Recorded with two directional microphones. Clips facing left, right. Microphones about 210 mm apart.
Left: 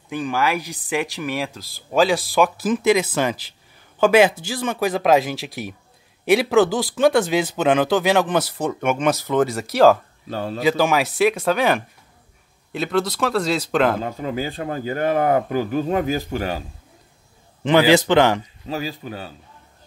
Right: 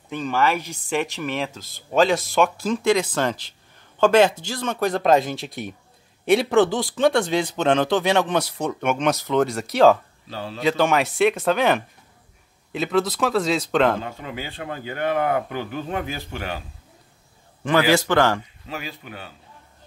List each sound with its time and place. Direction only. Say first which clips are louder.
0.1 s speech: even; 5° left (ahead or behind)
10.3 s a man's voice: left 6 dB; 50° left (ahead or behind)
10.6 s speech: left 1 dB; 5° left (ahead or behind)
14.0 s speech: left 7 dB; 40° left (ahead or behind)
17.6 s a man's voice: left 4 dB; 20° left (ahead or behind)
18.7 s speech: left 7 dB; 35° left (ahead or behind)